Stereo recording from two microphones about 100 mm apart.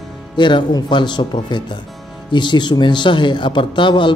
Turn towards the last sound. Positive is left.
turn(degrees=50)  # may be behind; listen again after turning